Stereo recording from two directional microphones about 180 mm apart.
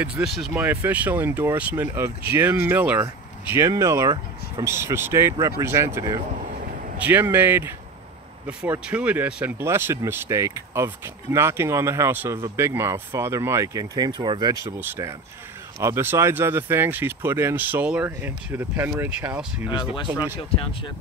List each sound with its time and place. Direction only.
0.0 s speech: 5° right (ahead or behind)
20.3 s speech: 30° left (ahead or behind)